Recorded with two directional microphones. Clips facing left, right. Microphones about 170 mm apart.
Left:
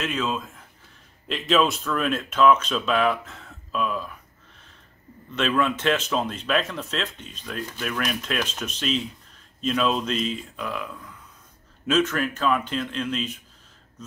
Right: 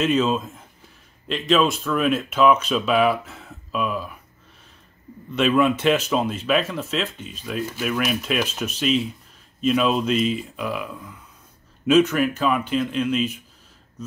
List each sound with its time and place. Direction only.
0.0 s a man's voice: 20° right (ahead or behind)
1.2 s speech: centre (ahead or behind)
5.3 s speech: 10° right (ahead or behind)